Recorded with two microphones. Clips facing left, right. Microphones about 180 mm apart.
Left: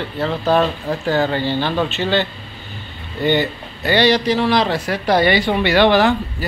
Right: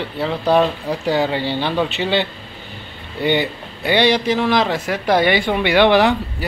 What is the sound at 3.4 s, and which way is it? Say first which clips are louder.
Speech: left 1 dB; 10° right (ahead or behind).